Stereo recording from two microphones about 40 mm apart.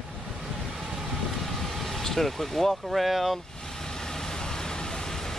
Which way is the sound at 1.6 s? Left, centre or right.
Centre.